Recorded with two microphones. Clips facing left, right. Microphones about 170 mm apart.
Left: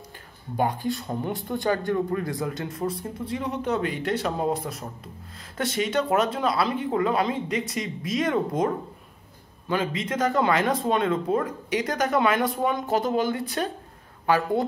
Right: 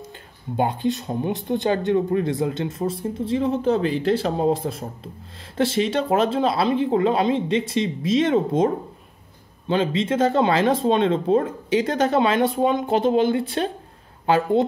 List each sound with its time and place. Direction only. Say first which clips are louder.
0.6 s speech: right 3 dB; 25° right (ahead or behind)